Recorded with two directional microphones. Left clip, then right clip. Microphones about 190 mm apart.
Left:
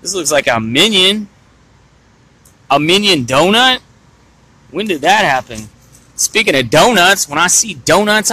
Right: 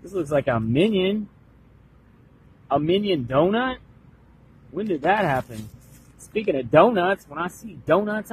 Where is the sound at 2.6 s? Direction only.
25° left (ahead or behind).